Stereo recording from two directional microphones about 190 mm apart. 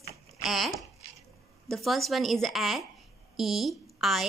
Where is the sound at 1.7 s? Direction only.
Centre (ahead or behind).